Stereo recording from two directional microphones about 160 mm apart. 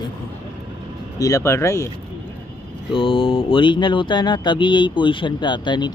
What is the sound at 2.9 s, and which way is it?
Speech, 35° left (ahead or behind).